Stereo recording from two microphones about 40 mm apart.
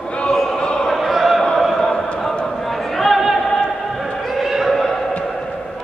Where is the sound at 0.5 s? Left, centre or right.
Left.